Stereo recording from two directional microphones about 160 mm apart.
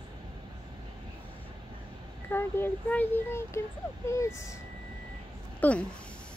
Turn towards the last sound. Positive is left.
turn(degrees=10)  # may be behind; listen again after turning